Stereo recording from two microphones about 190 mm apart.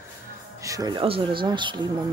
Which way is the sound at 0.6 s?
15° right (ahead or behind).